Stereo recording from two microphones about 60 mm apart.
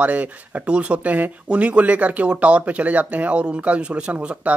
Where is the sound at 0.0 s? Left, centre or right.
Right.